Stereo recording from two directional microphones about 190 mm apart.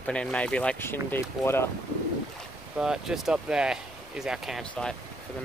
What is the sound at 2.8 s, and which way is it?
Speech, 5° right (ahead or behind).